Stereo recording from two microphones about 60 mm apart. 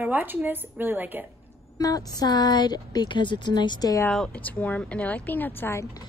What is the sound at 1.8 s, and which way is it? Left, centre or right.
Speech, left.